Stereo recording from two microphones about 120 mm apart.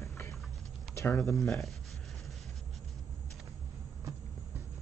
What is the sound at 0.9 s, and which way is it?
Speech, 25° left (ahead or behind).